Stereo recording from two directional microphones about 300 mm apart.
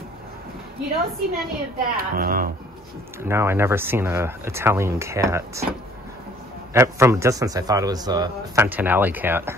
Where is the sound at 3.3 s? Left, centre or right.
Centre.